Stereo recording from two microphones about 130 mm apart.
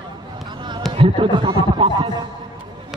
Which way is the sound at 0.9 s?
40° right (ahead or behind).